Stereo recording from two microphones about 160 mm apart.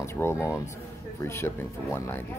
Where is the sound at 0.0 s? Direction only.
15° left (ahead or behind).